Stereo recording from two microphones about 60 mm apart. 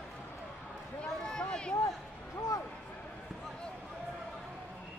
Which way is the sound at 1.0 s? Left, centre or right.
Centre.